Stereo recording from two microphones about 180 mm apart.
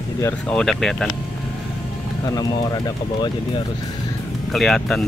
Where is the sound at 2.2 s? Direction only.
20° left (ahead or behind).